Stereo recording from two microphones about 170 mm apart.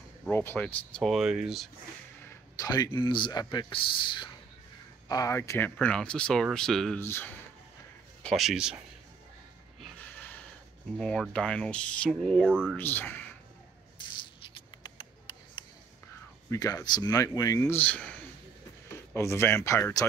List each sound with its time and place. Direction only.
0.3 s speech: 10° left (ahead or behind)
2.2 s speech: 20° left (ahead or behind); by 7.0 s 5° left (ahead or behind)
7.0 s speech: 15° left (ahead or behind)
8.2 s speech: centre (ahead or behind)
9.9 s a sound: 10° left (ahead or behind)
11.0 s speech: 5° left (ahead or behind)
12.7 s speech: 10° left (ahead or behind)
14.1 s a sound: 30° left (ahead or behind)
16.4 s speech: 20° left (ahead or behind)